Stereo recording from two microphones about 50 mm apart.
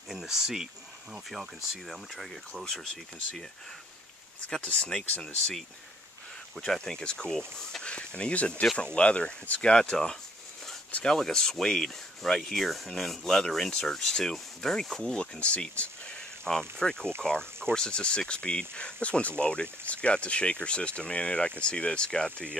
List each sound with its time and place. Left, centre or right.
0.1 s speech: centre
2.6 s rub: centre
4.5 s rub: centre
6.5 s rub: centre
7.8 s speech: left
11.1 s rub: centre
12.5 s rub: centre; by 15.9 s left
16.4 s rub: centre
17.2 s speech: centre